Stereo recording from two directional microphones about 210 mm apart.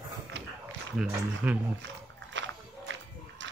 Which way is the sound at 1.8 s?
60° right (ahead or behind).